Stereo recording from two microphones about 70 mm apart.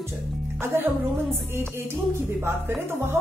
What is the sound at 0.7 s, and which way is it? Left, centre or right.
Speech, right.